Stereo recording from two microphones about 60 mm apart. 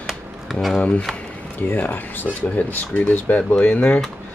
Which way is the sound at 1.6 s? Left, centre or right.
Left.